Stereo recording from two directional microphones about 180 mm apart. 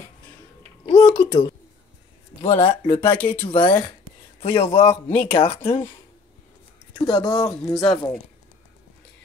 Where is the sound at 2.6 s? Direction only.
40° left (ahead or behind).